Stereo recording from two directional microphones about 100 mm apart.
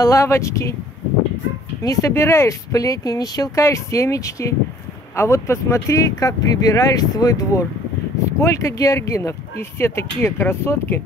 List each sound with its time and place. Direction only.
0.0 s speech: 35° left (ahead or behind)
1.8 s speech: 30° left (ahead or behind)